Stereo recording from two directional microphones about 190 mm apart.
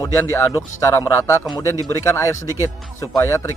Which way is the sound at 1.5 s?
15° left (ahead or behind).